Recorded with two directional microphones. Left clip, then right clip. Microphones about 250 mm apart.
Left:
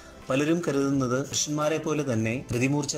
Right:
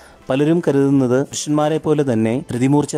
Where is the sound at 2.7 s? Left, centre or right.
Right.